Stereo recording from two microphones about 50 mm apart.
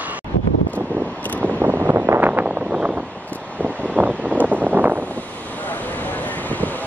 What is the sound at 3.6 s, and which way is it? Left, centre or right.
Vehicle, right.